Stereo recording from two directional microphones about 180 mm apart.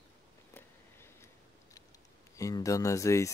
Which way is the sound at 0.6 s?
15° left (ahead or behind).